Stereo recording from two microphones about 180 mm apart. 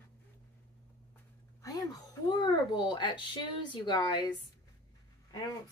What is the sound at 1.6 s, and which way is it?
Speech, 20° left (ahead or behind).